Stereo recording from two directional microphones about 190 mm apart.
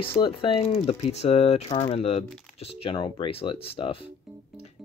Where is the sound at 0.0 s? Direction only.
30° left (ahead or behind).